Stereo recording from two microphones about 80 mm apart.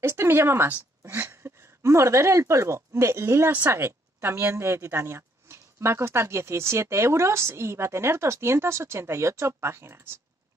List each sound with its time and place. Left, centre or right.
0.1 s a woman's voice: right